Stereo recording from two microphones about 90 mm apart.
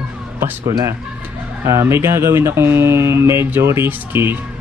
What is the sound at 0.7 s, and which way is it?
Speech, 45° right (ahead or behind).